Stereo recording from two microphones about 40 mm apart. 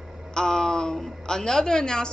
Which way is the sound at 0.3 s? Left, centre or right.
Centre.